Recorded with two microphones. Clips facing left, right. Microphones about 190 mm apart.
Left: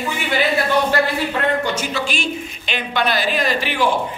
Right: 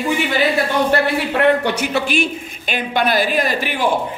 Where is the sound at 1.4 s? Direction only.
60° right (ahead or behind).